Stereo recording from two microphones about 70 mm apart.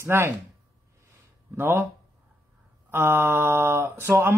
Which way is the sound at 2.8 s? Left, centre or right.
Right.